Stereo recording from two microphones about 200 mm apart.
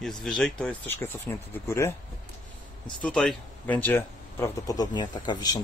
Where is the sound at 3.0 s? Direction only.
5° left (ahead or behind).